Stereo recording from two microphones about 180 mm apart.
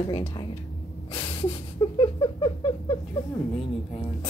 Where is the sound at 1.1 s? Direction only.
25° left (ahead or behind).